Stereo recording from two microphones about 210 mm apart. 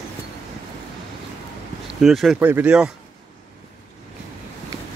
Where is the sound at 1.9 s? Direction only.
Centre (ahead or behind).